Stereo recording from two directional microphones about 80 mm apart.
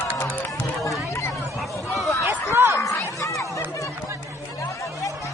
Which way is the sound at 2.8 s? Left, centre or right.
Left.